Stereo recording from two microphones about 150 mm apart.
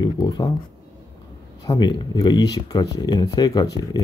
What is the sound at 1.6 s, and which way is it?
Speech, 25° left (ahead or behind).